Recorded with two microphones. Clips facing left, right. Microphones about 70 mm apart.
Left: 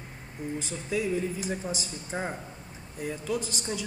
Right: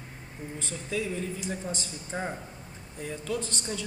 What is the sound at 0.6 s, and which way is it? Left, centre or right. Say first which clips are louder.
A woman's voice: left 1 dB; centre.